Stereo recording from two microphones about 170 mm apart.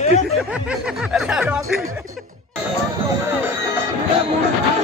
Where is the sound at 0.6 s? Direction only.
5° right (ahead or behind).